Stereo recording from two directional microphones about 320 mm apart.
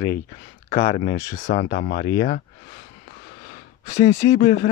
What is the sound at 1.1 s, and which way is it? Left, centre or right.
Speech, centre.